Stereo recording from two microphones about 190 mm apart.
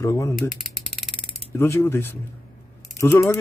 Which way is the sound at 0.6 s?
Centre (ahead or behind).